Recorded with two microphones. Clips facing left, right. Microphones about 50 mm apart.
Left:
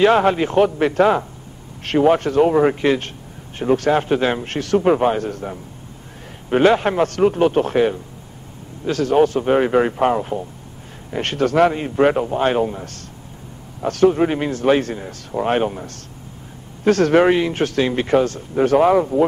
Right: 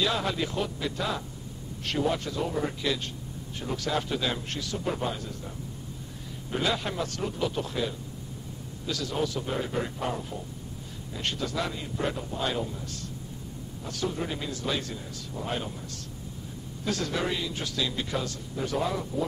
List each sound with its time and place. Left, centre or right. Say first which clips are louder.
0.0 s a man's voice: left 14 dB; left
0.6 s a man's voice: left 16 dB; left